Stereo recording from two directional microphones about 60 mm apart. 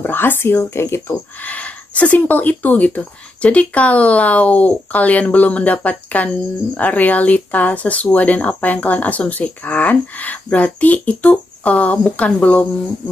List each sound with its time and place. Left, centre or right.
0.0 s speech: left
1.4 s speech: left